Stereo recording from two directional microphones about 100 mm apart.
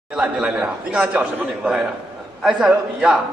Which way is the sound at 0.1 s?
5° right (ahead or behind).